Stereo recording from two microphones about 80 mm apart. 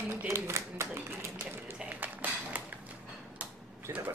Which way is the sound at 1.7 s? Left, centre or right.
Right.